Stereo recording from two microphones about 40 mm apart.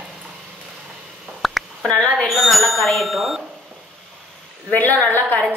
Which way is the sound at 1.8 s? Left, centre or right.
Left.